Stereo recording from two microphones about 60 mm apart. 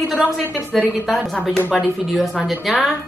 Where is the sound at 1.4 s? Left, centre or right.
Left.